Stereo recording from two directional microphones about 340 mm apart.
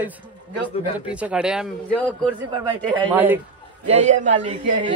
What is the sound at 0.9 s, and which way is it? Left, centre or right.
A man's voice, centre.